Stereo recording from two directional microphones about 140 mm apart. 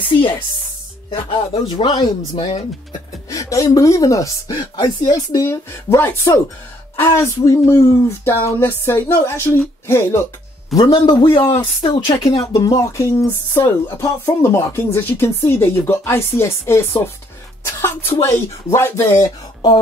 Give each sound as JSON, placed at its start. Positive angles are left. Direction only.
{"t": 1.1, "sound": "a woman's voice", "side_deg": 35}
{"t": 2.3, "sound": "speech", "side_deg": 45}
{"t": 3.3, "sound": "a woman's voice", "side_deg": 25}
{"t": 12.3, "sound": "speech", "side_deg": 25}